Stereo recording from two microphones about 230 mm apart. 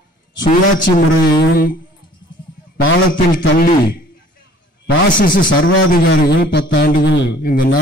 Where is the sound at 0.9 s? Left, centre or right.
Left.